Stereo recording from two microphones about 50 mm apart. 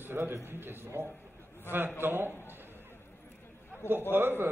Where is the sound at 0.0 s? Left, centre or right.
Right.